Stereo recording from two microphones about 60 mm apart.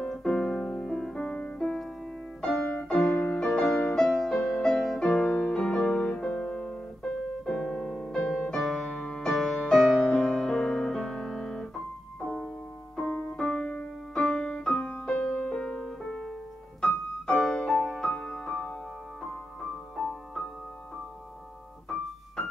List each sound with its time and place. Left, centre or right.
0.0 s music: centre
3.3 s music: centre
5.2 s music: left
9.2 s music: centre
12.9 s keyboard: centre
14.1 s music: centre
14.4 s music: centre
17.6 s music: centre
20.0 s music: centre